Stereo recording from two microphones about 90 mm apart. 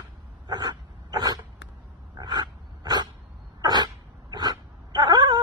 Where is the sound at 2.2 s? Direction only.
50° right (ahead or behind).